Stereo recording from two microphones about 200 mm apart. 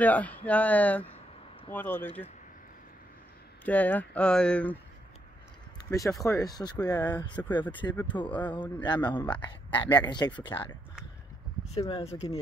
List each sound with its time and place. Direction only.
0.0 s speech: 10° left (ahead or behind)
3.6 s speech: 10° left (ahead or behind)
5.9 s speech: 15° left (ahead or behind)
11.8 s speech: 30° left (ahead or behind)